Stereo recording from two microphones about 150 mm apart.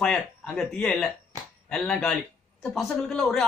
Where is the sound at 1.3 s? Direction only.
25° right (ahead or behind).